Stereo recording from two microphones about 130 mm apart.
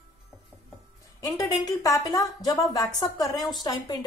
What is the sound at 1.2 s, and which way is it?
Speech, 25° left (ahead or behind).